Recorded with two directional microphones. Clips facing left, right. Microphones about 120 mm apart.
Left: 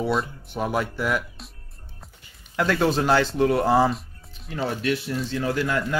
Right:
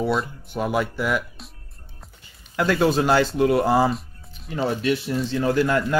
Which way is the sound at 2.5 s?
5° right (ahead or behind).